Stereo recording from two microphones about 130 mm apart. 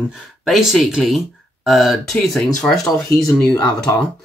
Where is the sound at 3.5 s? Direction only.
30° left (ahead or behind).